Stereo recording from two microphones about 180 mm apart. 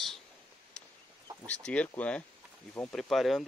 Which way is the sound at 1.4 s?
5° left (ahead or behind).